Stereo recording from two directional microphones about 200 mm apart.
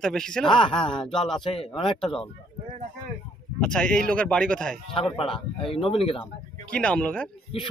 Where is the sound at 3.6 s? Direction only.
5° left (ahead or behind).